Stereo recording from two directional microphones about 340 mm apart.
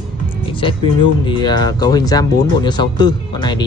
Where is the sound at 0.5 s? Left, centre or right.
Centre.